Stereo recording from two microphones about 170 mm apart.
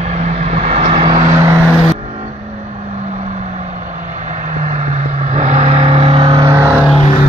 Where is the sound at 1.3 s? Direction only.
15° right (ahead or behind).